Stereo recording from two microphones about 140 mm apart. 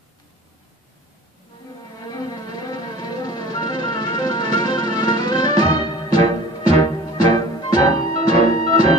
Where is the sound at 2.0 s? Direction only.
25° left (ahead or behind).